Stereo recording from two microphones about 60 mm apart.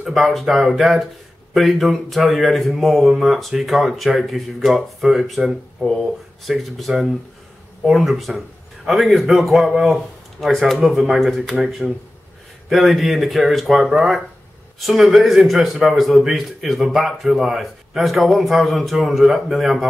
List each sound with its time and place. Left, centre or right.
0.0 s a man's voice: centre